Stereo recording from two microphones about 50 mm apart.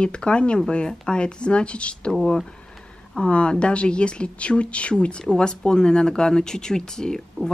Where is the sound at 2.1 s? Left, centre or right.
Centre.